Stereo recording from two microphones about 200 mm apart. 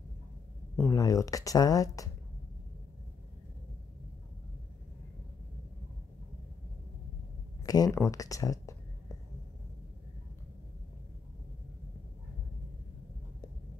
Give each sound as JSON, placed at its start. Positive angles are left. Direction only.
{"t": 0.7, "sound": "speech", "side_deg": 15}
{"t": 7.6, "sound": "speech", "side_deg": 20}